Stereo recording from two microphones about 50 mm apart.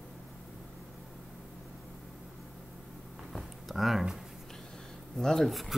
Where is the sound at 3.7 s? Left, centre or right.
Centre.